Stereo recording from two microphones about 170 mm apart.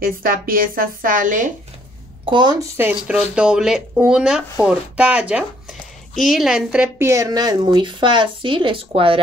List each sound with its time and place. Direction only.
0.0 s speech: 55° right (ahead or behind)
2.2 s speech: 25° right (ahead or behind)
2.8 s speech: 5° right (ahead or behind)
7.1 s speech: 20° right (ahead or behind)